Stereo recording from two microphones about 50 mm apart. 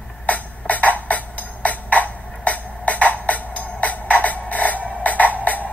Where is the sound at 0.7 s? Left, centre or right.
Left.